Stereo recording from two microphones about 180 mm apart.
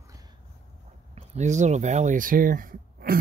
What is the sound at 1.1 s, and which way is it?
Speech, 40° right (ahead or behind).